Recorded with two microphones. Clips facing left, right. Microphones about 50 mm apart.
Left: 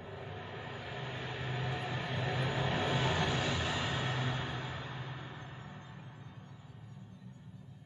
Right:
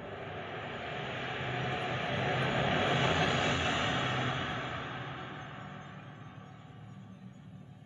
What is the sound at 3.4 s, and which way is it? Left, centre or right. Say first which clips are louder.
Music: right 4 dB; right.